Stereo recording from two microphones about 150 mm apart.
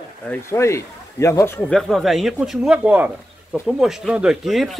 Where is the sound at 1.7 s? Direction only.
Centre (ahead or behind).